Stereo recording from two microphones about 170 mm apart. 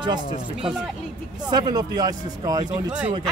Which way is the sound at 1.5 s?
25° right (ahead or behind).